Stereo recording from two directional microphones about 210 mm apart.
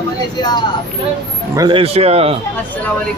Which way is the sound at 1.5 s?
20° right (ahead or behind).